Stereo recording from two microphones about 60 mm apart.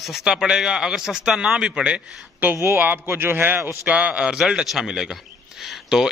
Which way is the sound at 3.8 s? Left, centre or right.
Right.